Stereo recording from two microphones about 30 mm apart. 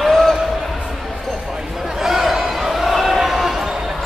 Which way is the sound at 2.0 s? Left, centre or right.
Centre.